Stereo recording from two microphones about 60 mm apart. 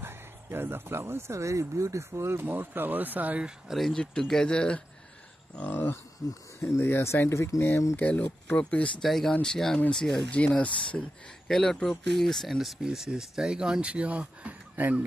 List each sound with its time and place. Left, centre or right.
0.0 s speech: right
2.4 s speech: right
3.7 s speech: centre
5.6 s speech: left
6.2 s speech: left
6.6 s speech: left
7.9 s speech: left
9.0 s speech: centre
10.3 s speech: left
12.5 s speech: centre; by 14.9 s right